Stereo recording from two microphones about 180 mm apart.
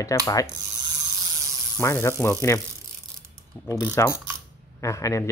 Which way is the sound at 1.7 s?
15° left (ahead or behind).